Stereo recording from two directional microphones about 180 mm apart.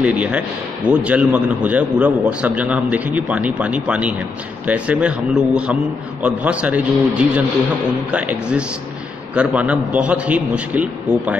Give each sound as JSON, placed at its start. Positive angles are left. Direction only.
{"t": 0.0, "sound": "a man's voice", "side_deg": -5}